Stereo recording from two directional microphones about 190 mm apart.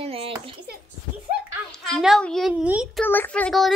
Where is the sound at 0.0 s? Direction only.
30° right (ahead or behind).